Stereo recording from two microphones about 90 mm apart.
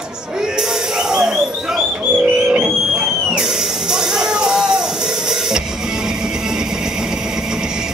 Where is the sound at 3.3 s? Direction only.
5° right (ahead or behind).